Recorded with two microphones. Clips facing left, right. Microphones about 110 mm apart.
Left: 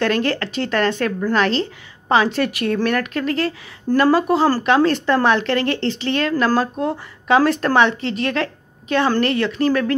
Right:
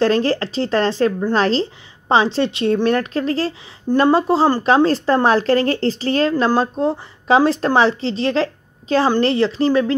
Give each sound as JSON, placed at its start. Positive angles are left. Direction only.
{"t": 0.0, "sound": "a woman's voice", "side_deg": -30}